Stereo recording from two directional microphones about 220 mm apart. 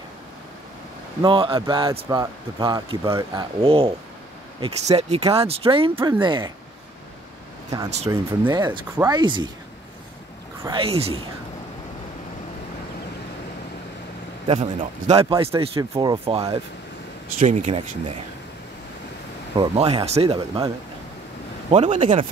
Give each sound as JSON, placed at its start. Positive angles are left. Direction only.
{"t": 1.2, "sound": "speech", "side_deg": -25}
{"t": 5.9, "sound": "speech", "side_deg": -10}
{"t": 6.2, "sound": "speech", "side_deg": -20}
{"t": 8.1, "sound": "speech", "side_deg": -20}
{"t": 10.6, "sound": "speech", "side_deg": -25}
{"t": 14.5, "sound": "speech", "side_deg": -30}
{"t": 17.4, "sound": "speech", "side_deg": -35}
{"t": 19.5, "sound": "speech", "side_deg": -25}